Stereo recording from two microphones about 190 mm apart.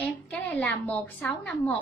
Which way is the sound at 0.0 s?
5° left (ahead or behind).